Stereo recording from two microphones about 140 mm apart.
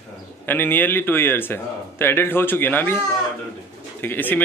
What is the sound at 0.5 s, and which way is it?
A man's voice, 15° left (ahead or behind).